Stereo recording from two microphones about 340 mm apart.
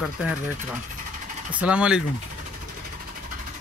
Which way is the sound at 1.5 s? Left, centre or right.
Centre.